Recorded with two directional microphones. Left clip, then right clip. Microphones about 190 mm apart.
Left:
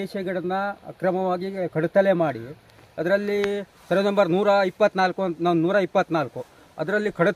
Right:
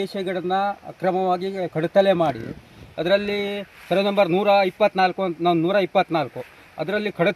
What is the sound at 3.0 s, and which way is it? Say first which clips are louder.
A man's voice: right 1 dB; 5° left (ahead or behind).